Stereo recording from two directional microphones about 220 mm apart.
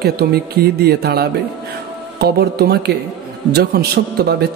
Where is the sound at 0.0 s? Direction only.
45° right (ahead or behind).